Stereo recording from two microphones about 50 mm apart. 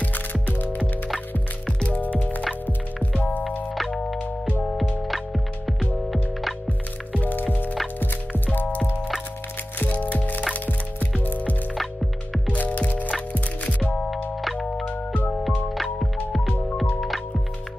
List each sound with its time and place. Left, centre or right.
0.0 s music: left
3.7 s music: centre
4.2 s music: left
5.0 s music: centre
7.2 s music: left
9.8 s music: left
11.7 s music: centre
12.5 s music: left
14.4 s music: centre
14.9 s music: left
15.7 s music: centre